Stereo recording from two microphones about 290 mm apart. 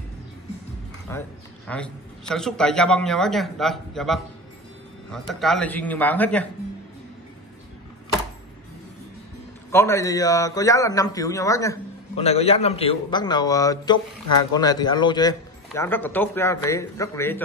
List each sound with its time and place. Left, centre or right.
1.1 s a man's voice: centre
9.7 s a man's voice: centre
12.2 s a man's voice: left